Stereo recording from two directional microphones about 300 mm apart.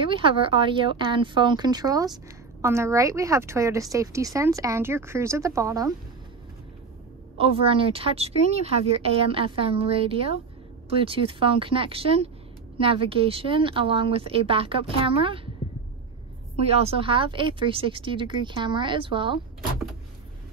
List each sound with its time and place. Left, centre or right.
0.0 s speech: centre
7.3 s a woman's voice: centre
16.6 s speech: centre